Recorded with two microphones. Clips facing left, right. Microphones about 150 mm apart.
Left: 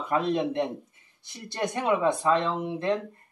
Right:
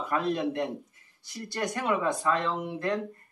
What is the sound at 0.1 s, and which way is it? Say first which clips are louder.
Speech: left 3 dB; 20° left (ahead or behind).